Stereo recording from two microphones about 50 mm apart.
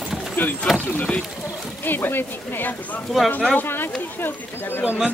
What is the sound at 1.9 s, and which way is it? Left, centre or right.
Speech, left.